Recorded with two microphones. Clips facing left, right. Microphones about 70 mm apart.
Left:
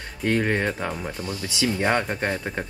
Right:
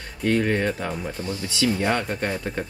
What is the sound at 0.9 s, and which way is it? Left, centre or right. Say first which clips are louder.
Speech: right 1 dB; centre.